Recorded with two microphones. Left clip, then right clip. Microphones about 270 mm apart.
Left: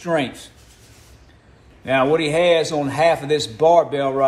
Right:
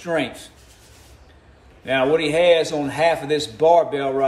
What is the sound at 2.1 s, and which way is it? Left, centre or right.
A man's voice, centre.